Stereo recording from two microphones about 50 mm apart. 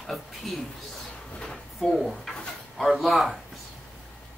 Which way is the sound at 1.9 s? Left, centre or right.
Centre.